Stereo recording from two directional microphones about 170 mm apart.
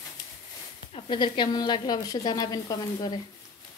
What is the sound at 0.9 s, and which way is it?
A woman's voice, 30° left (ahead or behind).